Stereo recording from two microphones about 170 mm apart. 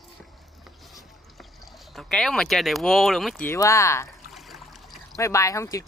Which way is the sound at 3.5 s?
20° left (ahead or behind).